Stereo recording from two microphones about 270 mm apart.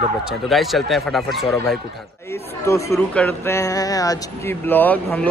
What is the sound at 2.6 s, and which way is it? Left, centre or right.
Speech, centre.